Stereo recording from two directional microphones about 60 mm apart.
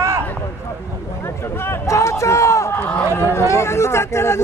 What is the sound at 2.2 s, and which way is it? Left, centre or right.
Run, left.